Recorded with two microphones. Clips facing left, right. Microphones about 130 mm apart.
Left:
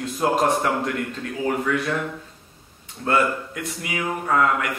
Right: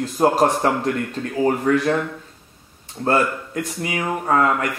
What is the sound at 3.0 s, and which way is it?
Speech, 35° right (ahead or behind).